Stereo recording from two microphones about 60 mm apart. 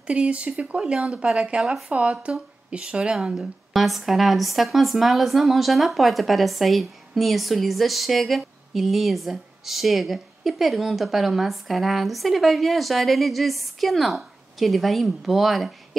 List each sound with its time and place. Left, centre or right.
0.0 s speech: right
3.3 s speech: centre